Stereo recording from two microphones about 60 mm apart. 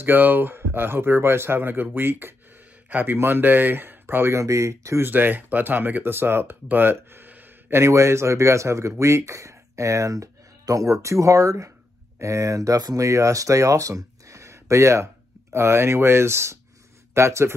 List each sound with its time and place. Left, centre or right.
0.0 s speech: right
4.3 s speech: right
5.0 s speech: right
7.7 s speech: right